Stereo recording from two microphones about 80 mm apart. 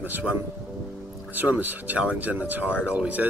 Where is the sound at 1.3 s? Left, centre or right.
Right.